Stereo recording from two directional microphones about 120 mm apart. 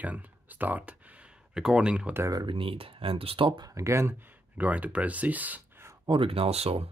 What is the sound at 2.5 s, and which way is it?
Speech, 50° right (ahead or behind).